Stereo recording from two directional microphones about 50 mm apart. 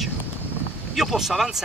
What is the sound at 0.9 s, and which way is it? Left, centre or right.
Speech, centre.